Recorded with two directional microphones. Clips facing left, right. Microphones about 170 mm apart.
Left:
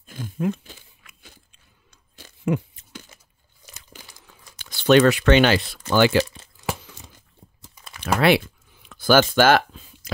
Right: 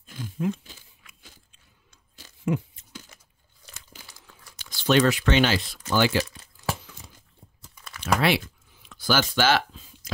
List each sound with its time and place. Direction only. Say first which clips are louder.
0.0 s crunch: left 3 dB; 50° left (ahead or behind)
2.1 s a sound: left 3 dB; 65° left (ahead or behind)
4.6 s speech: left 5 dB; 60° left (ahead or behind)
6.3 s crumpling: left 2 dB; 25° left (ahead or behind)
8.0 s typing: left 5 dB; 60° left (ahead or behind)
8.8 s a sound: left 8 dB; 55° left (ahead or behind)